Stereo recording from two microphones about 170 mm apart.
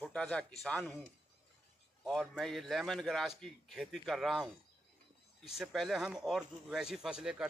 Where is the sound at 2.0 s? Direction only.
Centre (ahead or behind).